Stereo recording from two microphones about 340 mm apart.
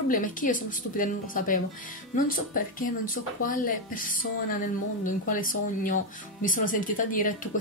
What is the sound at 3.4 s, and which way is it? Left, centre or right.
Speech, left.